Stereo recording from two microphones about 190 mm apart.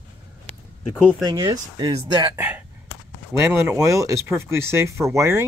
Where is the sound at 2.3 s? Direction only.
10° right (ahead or behind).